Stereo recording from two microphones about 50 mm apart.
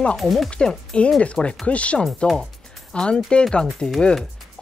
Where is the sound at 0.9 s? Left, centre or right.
Left.